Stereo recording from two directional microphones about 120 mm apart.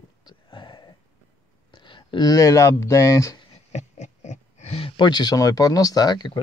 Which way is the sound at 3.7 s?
75° left (ahead or behind).